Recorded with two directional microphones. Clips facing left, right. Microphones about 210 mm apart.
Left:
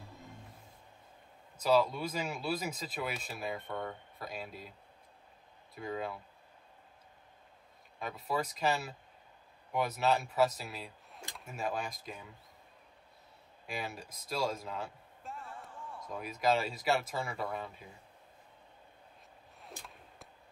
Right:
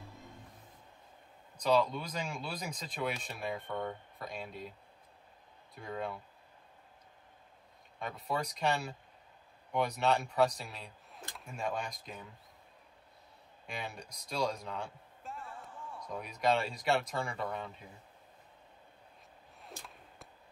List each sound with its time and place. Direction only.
1.6 s speech: 5° left (ahead or behind)
5.8 s speech: centre (ahead or behind)
8.0 s speech: centre (ahead or behind)
13.7 s a man's voice: 5° left (ahead or behind)
19.6 s arrow: centre (ahead or behind)